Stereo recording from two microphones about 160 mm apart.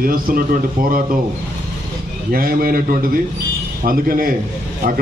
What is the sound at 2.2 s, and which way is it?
A man's voice, 65° right (ahead or behind).